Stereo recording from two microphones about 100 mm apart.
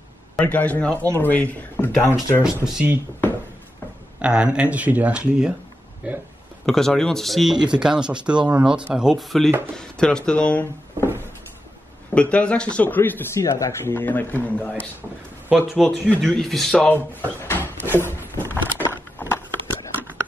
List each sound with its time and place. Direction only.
0.4 s speech: 15° left (ahead or behind)
2.4 s speech: 5° right (ahead or behind)
4.2 s speech: 10° right (ahead or behind)
6.6 s speech: 5° left (ahead or behind)
12.1 s speech: 15° left (ahead or behind)
15.7 s speech: centre (ahead or behind)
17.4 s a sound: 20° left (ahead or behind)